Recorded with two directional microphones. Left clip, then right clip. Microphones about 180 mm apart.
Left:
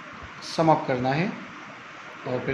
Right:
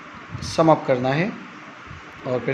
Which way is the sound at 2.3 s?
30° right (ahead or behind).